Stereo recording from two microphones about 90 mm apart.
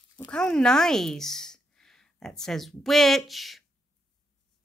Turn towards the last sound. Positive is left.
turn(degrees=0)  # may be behind; listen again after turning